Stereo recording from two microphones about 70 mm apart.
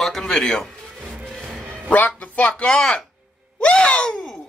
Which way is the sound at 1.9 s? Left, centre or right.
Left.